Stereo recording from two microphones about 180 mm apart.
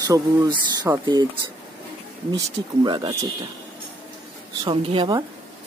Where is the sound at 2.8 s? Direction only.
25° right (ahead or behind).